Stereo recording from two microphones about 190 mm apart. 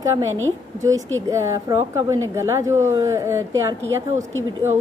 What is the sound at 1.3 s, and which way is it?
Speech, 15° right (ahead or behind).